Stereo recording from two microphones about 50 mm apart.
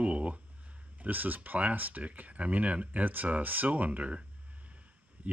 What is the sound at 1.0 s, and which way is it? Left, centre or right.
Speech, right.